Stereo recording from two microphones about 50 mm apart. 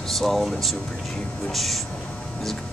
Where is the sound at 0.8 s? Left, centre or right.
Left.